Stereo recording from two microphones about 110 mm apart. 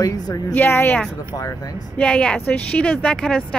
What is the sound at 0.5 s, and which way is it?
Speech, 20° left (ahead or behind).